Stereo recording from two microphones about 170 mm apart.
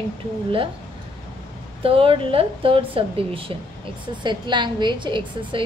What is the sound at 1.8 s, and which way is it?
A woman's voice, 35° right (ahead or behind).